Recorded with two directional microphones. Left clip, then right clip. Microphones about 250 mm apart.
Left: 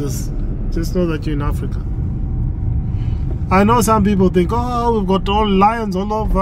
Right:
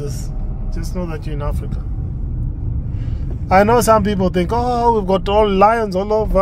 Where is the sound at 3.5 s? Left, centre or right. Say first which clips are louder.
Right 2 dB; right.